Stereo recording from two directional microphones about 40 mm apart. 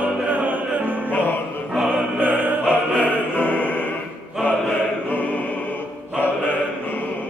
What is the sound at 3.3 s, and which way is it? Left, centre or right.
Music, left.